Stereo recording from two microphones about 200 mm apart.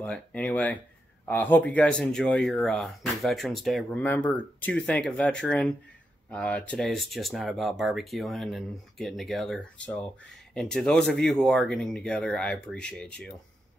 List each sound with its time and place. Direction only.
0.0 s speech: 5° left (ahead or behind)